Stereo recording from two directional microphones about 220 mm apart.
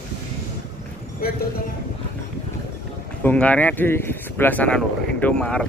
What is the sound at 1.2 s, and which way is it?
Speech, 45° left (ahead or behind).